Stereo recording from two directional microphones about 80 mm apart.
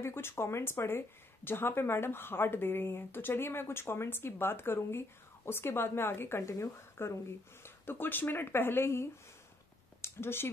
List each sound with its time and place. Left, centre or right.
0.0 s speech: left